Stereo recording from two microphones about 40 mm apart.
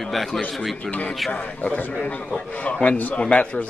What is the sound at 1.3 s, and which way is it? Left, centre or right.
A man's voice, left.